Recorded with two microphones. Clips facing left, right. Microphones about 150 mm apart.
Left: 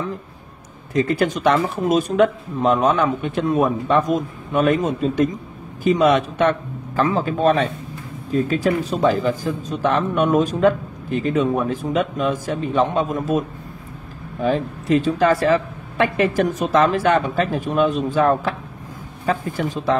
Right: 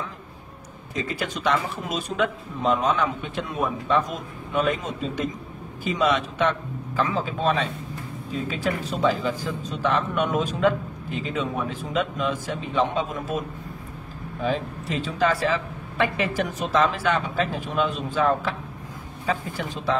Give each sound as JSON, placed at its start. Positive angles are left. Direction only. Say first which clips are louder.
{"t": 1.0, "sound": "speech", "louder": "left 7 dB", "side_deg": 55}
{"t": 9.0, "sound": "speech", "louder": "left 4 dB", "side_deg": 50}
{"t": 14.4, "sound": "speech", "louder": "left 6 dB", "side_deg": 50}